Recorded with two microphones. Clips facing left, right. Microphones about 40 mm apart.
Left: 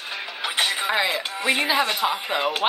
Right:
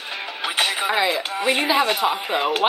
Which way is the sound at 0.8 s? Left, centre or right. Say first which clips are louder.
Right 2 dB; centre.